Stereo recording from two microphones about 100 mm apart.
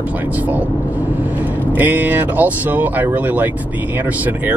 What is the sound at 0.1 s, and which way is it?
Speech, 15° right (ahead or behind).